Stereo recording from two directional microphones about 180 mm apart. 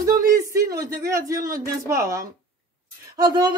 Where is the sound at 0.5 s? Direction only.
20° right (ahead or behind).